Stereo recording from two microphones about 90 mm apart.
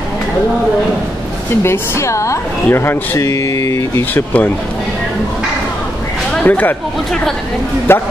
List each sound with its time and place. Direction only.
1.6 s speech: 30° left (ahead or behind)
4.1 s speech: 20° left (ahead or behind)
6.4 s speech: 20° left (ahead or behind)
7.9 s speech: 25° left (ahead or behind)